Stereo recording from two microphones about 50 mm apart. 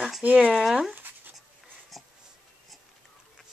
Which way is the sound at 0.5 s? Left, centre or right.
Centre.